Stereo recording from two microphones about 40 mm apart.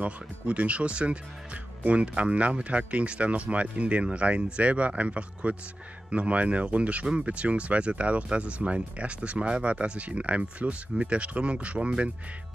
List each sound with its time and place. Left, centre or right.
0.0 s speech: right